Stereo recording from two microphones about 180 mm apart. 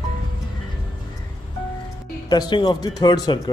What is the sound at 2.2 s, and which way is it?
Speech, 25° left (ahead or behind).